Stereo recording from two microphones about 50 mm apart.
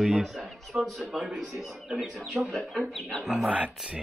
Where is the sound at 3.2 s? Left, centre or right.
Centre.